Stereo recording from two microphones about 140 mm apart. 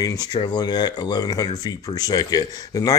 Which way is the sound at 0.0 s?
25° left (ahead or behind).